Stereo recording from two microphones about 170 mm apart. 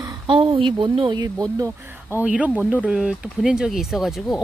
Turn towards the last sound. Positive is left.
turn(degrees=0)  # may be behind; listen again after turning